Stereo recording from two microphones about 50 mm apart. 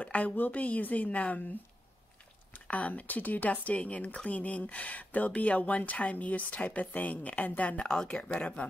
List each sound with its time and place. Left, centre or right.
0.0 s a woman's voice: left
2.5 s speech: left